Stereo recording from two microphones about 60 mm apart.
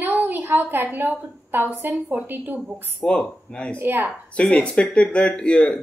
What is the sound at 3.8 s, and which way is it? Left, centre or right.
Speech, right.